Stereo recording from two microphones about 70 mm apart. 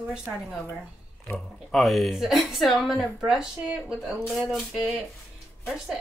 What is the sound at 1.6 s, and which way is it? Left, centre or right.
A woman's voice, centre.